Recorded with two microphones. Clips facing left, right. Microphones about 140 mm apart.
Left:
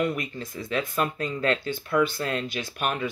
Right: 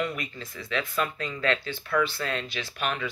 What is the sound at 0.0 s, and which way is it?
Speech, 45° left (ahead or behind).